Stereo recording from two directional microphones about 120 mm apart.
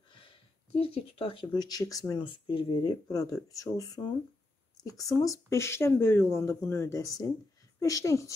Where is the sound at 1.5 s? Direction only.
35° left (ahead or behind).